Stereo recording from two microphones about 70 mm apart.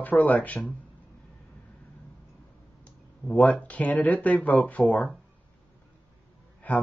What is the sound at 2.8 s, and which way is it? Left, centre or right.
Speech, left.